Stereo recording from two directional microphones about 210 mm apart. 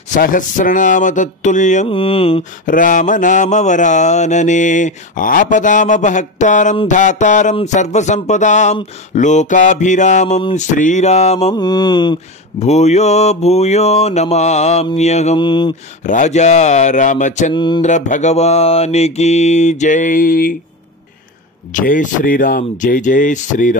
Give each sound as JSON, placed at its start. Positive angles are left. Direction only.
{"t": 0.1, "sound": "mantra", "side_deg": 40}
{"t": 2.6, "sound": "mantra", "side_deg": 40}
{"t": 16.0, "sound": "mantra", "side_deg": 35}
{"t": 17.6, "sound": "mantra", "side_deg": 20}
{"t": 17.8, "sound": "mantra", "side_deg": 35}
{"t": 21.7, "sound": "mantra", "side_deg": 40}